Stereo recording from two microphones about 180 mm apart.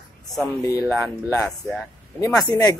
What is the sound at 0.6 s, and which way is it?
Speech, 20° left (ahead or behind).